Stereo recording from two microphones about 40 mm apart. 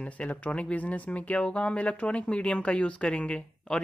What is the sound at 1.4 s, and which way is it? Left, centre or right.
Speech, left.